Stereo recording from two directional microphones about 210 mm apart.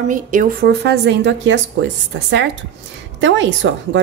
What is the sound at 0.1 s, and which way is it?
A woman's voice, 40° right (ahead or behind).